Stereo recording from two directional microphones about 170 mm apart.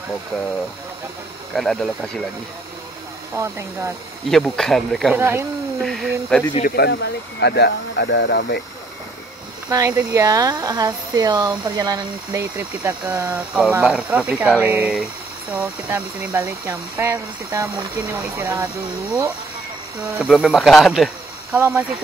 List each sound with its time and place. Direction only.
1.5 s speech: centre (ahead or behind)
3.3 s speech: 15° right (ahead or behind)
4.3 s speech: centre (ahead or behind)
5.1 s speech: 15° right (ahead or behind)
5.8 s speech: centre (ahead or behind)
6.6 s speech: 70° left (ahead or behind); by 8.5 s 85° left
9.7 s speech: 20° right (ahead or behind)
20.2 s speech: 5° right (ahead or behind)